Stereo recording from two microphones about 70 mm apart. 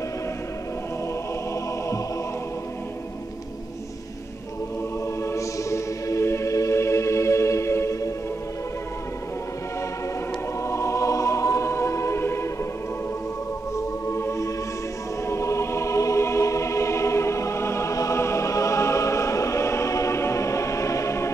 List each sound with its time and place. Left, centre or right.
5.2 s music: left
10.6 s music: left
13.7 s music: left